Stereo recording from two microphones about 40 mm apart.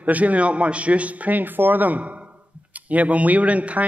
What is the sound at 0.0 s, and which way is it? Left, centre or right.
A man's voice, right.